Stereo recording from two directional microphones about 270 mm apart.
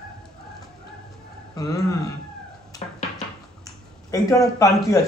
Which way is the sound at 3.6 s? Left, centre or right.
Centre.